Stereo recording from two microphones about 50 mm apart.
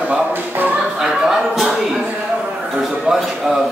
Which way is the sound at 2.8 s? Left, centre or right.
Centre.